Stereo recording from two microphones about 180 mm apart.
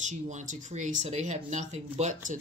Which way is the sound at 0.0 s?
40° right (ahead or behind).